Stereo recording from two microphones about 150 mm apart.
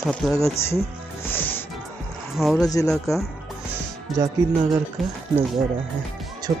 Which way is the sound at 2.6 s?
20° left (ahead or behind).